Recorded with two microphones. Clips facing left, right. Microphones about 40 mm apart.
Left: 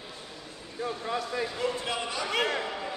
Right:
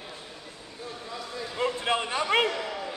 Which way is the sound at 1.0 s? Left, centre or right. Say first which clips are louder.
Left 6 dB; left.